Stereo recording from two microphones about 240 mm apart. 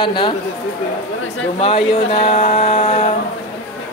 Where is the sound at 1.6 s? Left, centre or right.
Left.